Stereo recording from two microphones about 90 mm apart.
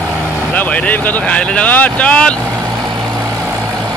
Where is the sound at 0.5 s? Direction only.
15° left (ahead or behind).